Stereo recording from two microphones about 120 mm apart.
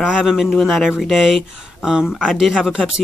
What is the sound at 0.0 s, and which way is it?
Speech, 5° right (ahead or behind).